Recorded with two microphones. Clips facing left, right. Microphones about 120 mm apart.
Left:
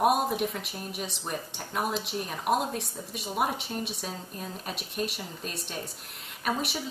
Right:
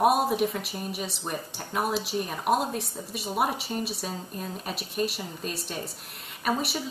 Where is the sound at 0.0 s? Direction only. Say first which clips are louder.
Right 2 dB; centre (ahead or behind).